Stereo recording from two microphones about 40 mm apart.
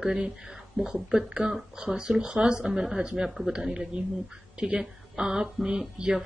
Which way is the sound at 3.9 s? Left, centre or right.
Right.